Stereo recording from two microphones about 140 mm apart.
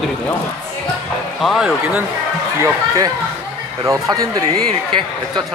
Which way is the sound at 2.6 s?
25° right (ahead or behind).